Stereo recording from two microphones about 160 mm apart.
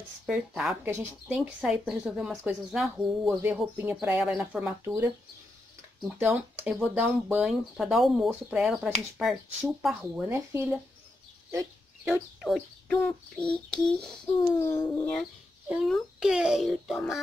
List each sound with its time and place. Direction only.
0.3 s speech: centre (ahead or behind)
3.4 s speech: 10° right (ahead or behind)
6.1 s speech: 15° right (ahead or behind)
10.3 s speech: 15° right (ahead or behind)
11.5 s bird: 10° right (ahead or behind)
12.4 s speech: 5° left (ahead or behind)
14.6 s speech: 15° left (ahead or behind)
15.7 s speech: centre (ahead or behind)